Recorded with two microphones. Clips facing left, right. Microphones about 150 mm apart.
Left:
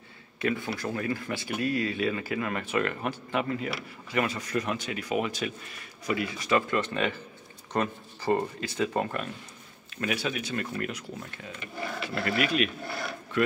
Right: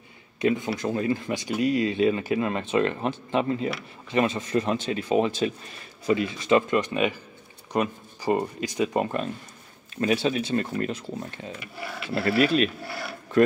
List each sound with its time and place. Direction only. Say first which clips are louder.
0.4 s speech: right 5 dB; 20° right (ahead or behind)